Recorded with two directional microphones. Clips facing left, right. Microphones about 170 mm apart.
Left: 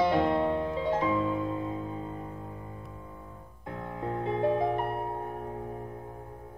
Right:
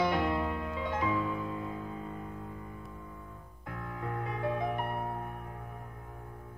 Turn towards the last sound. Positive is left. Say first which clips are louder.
# left 5 dB
turn(degrees=30)  # may be behind; listen again after turning